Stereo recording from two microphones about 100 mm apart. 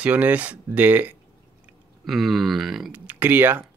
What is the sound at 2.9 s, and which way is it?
Speech, 15° right (ahead or behind).